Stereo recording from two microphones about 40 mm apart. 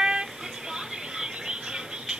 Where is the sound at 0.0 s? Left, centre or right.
Right.